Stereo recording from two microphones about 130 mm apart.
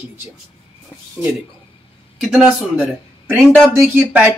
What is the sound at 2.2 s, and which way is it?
Speech, 5° right (ahead or behind).